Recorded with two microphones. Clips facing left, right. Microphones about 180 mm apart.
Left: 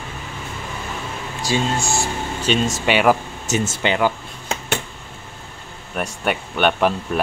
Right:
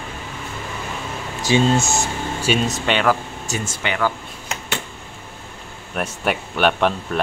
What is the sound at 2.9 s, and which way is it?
Speech, 10° left (ahead or behind).